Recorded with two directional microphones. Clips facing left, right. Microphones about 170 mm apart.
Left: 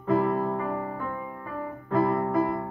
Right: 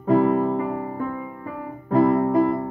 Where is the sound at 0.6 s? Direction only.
10° right (ahead or behind).